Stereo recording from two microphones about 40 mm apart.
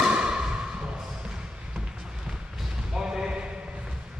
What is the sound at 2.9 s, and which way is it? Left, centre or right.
Basketball bounce, centre.